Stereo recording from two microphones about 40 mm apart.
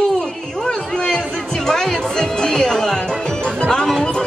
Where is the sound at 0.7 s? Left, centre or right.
Centre.